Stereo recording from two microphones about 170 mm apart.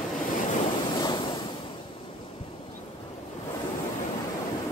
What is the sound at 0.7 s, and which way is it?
Waves, 25° left (ahead or behind).